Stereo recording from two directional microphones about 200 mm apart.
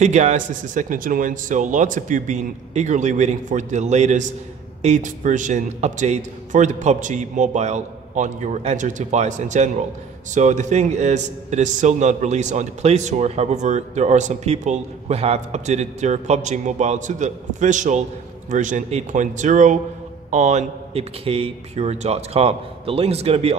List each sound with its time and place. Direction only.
0.0 s a man's voice: 35° right (ahead or behind)